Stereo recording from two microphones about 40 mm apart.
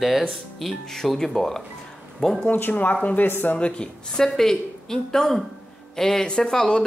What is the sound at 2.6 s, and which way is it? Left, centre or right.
Speech, left.